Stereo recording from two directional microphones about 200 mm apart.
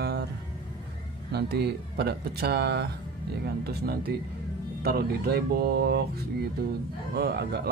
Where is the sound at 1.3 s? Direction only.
55° right (ahead or behind).